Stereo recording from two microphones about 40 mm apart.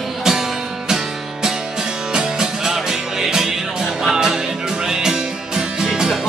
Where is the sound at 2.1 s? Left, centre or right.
Centre.